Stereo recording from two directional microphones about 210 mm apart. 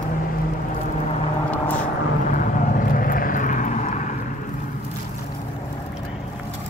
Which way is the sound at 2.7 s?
40° left (ahead or behind).